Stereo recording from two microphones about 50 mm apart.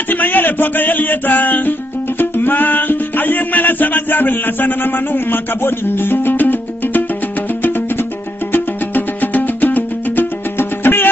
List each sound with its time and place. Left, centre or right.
0.1 s music: left
8.5 s music: left